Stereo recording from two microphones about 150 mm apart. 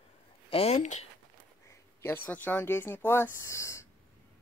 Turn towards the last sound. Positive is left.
turn(degrees=20)  # may be behind; listen again after turning